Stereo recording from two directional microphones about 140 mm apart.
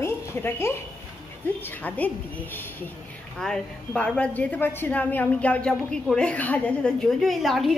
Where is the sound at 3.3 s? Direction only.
5° left (ahead or behind).